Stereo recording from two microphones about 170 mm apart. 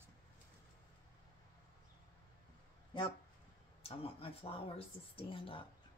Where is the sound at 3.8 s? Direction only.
35° left (ahead or behind).